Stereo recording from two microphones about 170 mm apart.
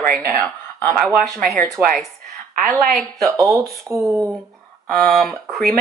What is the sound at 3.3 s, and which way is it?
Speech, 20° right (ahead or behind).